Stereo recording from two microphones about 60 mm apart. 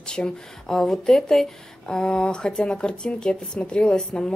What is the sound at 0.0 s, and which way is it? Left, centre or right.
A woman's voice, centre.